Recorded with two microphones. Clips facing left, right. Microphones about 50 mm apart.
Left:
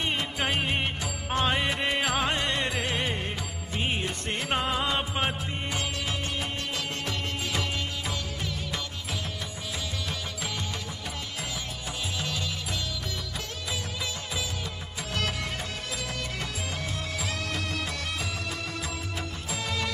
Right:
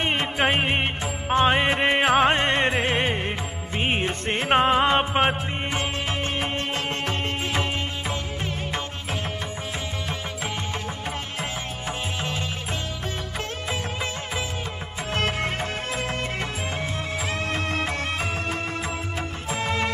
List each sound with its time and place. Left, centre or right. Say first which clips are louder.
0.0 s music: right 6 dB; right
15.1 s music: right 6 dB; right
17.5 s music: right 6 dB; right
19.5 s music: right 7 dB; right